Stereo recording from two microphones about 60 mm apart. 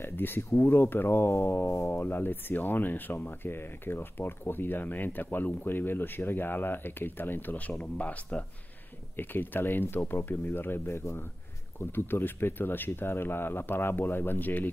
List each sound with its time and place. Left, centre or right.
0.0 s speech: left
1.9 s speech: left
9.1 s speech: left